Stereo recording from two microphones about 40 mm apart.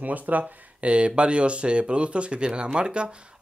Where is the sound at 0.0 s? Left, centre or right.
Right.